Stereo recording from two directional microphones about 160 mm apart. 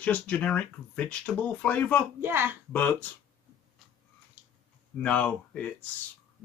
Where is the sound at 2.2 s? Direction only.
15° right (ahead or behind).